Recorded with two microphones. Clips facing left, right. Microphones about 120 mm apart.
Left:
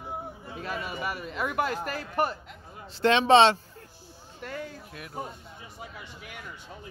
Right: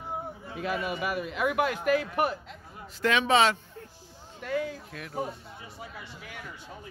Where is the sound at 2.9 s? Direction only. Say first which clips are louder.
Left 5 dB; 30° left (ahead or behind).